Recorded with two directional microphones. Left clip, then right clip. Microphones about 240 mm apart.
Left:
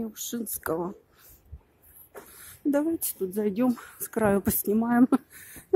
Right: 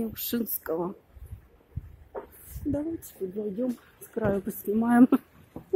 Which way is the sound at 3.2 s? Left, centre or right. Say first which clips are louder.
Left 4 dB; left.